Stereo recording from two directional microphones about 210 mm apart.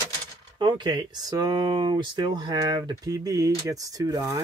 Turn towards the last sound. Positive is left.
turn(degrees=-15)  # may be behind; listen again after turning